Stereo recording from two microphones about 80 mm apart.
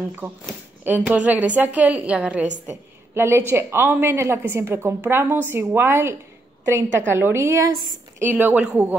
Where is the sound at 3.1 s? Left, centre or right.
Right.